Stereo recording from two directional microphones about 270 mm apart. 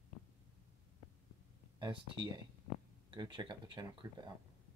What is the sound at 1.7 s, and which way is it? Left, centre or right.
Speech, centre.